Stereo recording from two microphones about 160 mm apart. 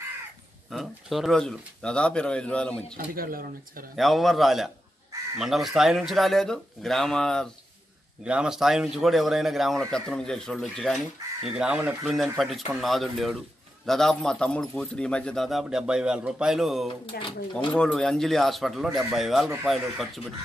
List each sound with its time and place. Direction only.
0.7 s speech: centre (ahead or behind)
3.2 s speech: 65° right (ahead or behind)
3.9 s speech: centre (ahead or behind)
17.1 s speech: 80° left
17.7 s speech: 5° left (ahead or behind)